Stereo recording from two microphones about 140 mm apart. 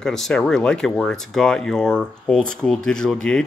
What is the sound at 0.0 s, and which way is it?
Speech, 5° left (ahead or behind).